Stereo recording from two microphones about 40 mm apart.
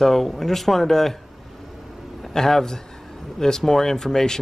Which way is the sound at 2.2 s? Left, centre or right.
Centre.